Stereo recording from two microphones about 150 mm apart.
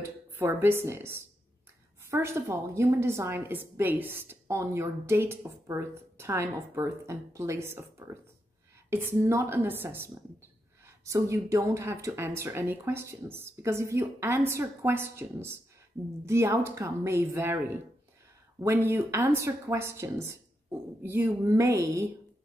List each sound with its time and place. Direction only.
0.0 s a woman's voice: 15° right (ahead or behind)